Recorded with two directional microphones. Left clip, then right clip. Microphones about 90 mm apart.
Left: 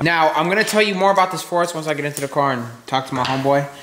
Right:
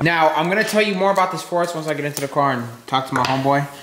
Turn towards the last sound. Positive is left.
turn(degrees=0)  # may be behind; listen again after turning